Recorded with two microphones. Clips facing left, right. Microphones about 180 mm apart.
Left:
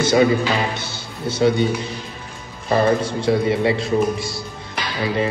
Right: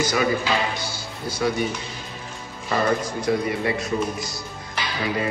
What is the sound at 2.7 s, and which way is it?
A man's voice, 30° left (ahead or behind).